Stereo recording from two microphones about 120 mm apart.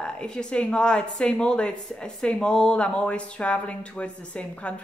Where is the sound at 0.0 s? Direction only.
5° left (ahead or behind).